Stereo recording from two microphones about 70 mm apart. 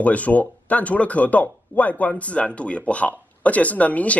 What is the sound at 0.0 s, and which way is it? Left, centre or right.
Speech, left.